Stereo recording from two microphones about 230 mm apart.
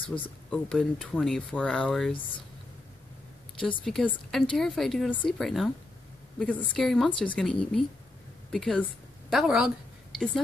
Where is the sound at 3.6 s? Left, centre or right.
Centre.